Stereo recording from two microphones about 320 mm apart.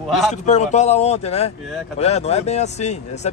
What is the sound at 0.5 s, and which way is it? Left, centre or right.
Speech, left.